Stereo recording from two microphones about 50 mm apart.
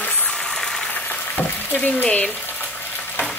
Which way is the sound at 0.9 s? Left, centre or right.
Left.